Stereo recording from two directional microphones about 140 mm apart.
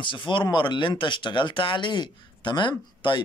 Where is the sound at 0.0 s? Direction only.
35° left (ahead or behind).